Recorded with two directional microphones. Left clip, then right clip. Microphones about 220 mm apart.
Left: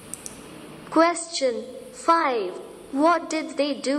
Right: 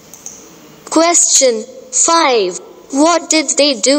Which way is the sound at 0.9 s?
50° right (ahead or behind).